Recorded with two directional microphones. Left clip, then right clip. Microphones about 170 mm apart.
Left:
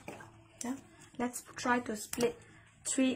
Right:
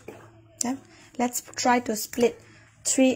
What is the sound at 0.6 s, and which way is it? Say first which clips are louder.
Speech: right 11 dB; 55° right (ahead or behind).